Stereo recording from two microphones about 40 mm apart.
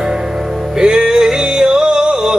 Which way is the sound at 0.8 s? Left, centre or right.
Centre.